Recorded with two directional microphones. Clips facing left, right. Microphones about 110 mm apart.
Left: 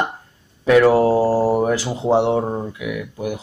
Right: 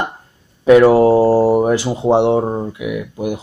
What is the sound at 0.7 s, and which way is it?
Speech, 20° right (ahead or behind).